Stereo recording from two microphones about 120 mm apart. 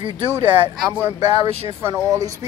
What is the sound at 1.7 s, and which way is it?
Speech, 20° right (ahead or behind).